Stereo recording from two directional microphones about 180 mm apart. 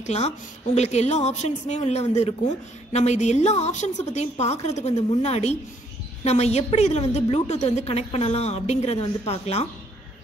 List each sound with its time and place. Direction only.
0.0 s a woman's voice: 40° left (ahead or behind)